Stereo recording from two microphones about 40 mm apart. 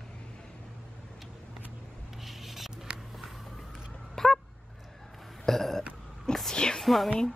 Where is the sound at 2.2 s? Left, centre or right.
Centre.